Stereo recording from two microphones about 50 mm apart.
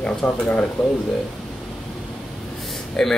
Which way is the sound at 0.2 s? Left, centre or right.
Centre.